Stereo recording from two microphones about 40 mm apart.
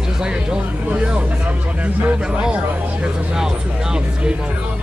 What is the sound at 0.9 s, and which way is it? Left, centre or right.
Speech, right.